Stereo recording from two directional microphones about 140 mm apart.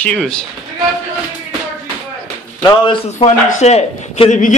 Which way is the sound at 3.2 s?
50° left (ahead or behind).